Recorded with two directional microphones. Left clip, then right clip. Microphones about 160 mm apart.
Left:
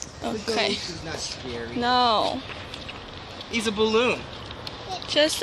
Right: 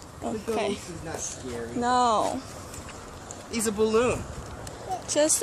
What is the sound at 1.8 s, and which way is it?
Speech, 20° right (ahead or behind).